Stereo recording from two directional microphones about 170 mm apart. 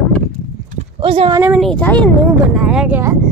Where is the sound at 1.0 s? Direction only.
30° right (ahead or behind).